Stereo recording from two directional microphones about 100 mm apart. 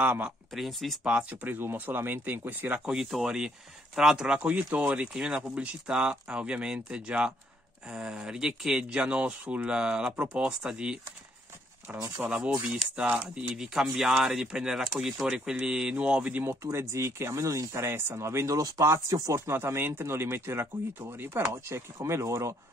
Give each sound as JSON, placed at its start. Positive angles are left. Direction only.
{"t": 0.0, "sound": "speech", "side_deg": -10}
{"t": 0.5, "sound": "speech", "side_deg": 0}
{"t": 1.3, "sound": "speech", "side_deg": -20}
{"t": 12.2, "sound": "speech", "side_deg": -10}
{"t": 16.6, "sound": "speech", "side_deg": -30}